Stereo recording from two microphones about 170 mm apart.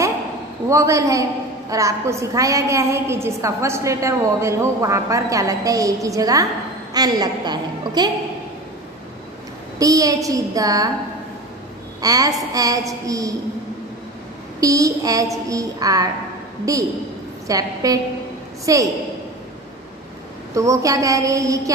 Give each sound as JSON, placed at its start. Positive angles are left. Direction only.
{"t": 0.7, "sound": "a woman's voice", "side_deg": -20}
{"t": 9.8, "sound": "a woman's voice", "side_deg": -20}
{"t": 12.0, "sound": "a woman's voice", "side_deg": -20}
{"t": 14.6, "sound": "a woman's voice", "side_deg": -20}
{"t": 20.5, "sound": "a woman's voice", "side_deg": -20}